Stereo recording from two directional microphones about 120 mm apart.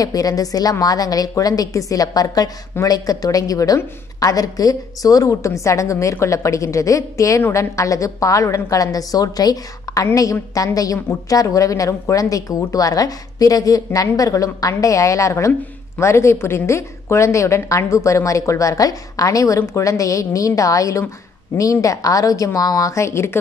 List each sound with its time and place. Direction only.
0.0 s a woman's voice: 30° left (ahead or behind)